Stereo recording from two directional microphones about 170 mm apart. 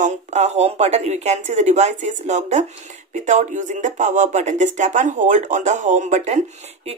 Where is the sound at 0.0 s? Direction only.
45° right (ahead or behind).